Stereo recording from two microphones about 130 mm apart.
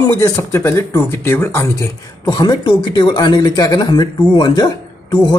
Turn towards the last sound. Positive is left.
turn(degrees=30)  # may be behind; listen again after turning